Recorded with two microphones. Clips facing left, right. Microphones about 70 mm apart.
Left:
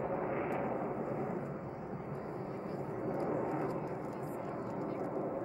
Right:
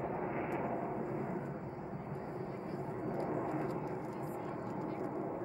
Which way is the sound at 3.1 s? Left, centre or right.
Centre.